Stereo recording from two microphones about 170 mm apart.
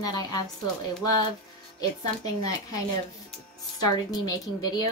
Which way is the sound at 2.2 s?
20° left (ahead or behind).